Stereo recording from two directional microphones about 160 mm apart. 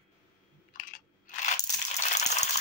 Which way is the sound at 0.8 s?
50° left (ahead or behind).